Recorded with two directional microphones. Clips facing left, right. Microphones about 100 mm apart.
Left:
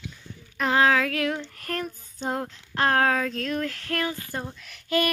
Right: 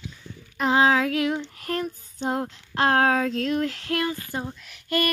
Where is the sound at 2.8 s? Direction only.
20° right (ahead or behind).